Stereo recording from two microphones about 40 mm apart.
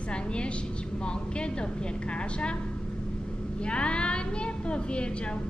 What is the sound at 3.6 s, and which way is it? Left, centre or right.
A woman's voice, left.